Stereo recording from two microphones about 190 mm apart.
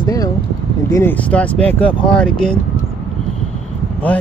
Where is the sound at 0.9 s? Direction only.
10° left (ahead or behind).